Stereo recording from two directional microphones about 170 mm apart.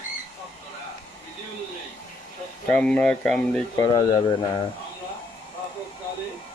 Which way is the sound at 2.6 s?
5° left (ahead or behind).